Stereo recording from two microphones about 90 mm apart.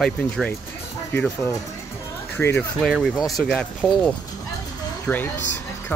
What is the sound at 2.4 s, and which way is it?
Speech, 20° left (ahead or behind).